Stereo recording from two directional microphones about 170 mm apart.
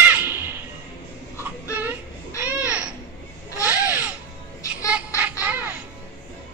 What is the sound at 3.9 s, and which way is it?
Music, 10° right (ahead or behind).